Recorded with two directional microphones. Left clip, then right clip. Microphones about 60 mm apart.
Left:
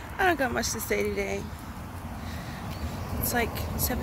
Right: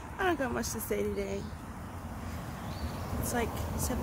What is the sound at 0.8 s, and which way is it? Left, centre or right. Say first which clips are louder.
Speech: left 4 dB; right.